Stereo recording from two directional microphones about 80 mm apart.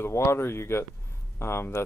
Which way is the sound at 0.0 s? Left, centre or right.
Left.